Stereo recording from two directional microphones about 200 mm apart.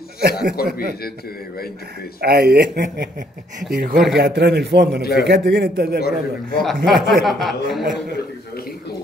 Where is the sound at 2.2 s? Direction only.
55° right (ahead or behind).